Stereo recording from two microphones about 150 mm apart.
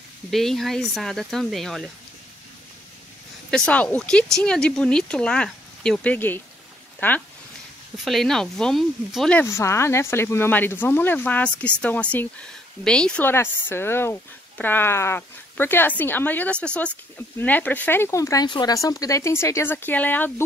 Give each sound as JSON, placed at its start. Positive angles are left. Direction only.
{"t": 0.3, "sound": "speech", "side_deg": 0}
{"t": 3.4, "sound": "speech", "side_deg": 5}
{"t": 8.0, "sound": "speech", "side_deg": 0}
{"t": 9.4, "sound": "speech", "side_deg": 20}